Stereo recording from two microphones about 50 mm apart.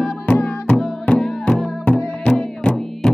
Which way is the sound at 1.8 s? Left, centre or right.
Left.